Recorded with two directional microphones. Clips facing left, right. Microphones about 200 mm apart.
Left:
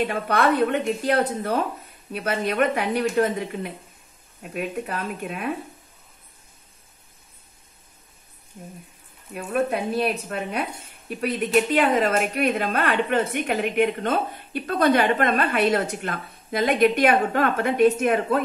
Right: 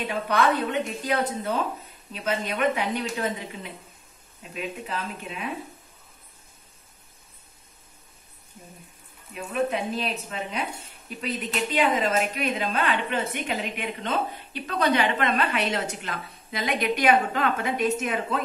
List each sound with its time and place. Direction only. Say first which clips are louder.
0.0 s speech: left 2 dB; 50° left (ahead or behind)
9.3 s a woman's voice: left 3 dB; 55° left (ahead or behind)